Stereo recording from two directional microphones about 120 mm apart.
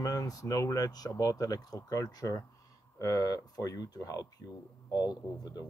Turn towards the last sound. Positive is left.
turn(degrees=35)  # may be behind; listen again after turning